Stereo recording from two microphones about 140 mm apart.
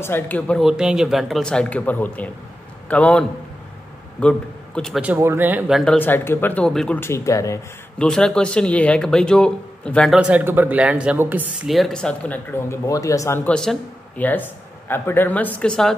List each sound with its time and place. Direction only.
0.0 s speech: 15° left (ahead or behind)
0.7 s a man's voice: 5° right (ahead or behind)
5.0 s speech: 15° right (ahead or behind)
5.7 s speech: centre (ahead or behind)
5.9 s speech: 15° left (ahead or behind)
7.0 s speech: 20° left (ahead or behind)
8.0 s speech: 5° left (ahead or behind)
10.1 s speech: 10° right (ahead or behind)
11.6 s speech: centre (ahead or behind)